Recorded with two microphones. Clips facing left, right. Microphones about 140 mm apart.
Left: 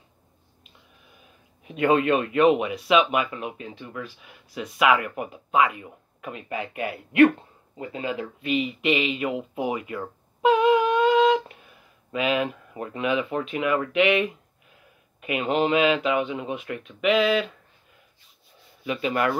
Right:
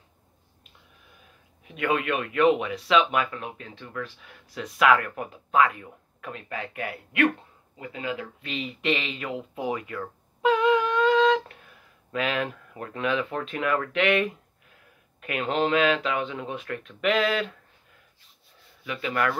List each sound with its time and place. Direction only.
1.6 s speech: 25° left (ahead or behind)
8.5 s speech: 15° left (ahead or behind)
18.9 s speech: 20° left (ahead or behind)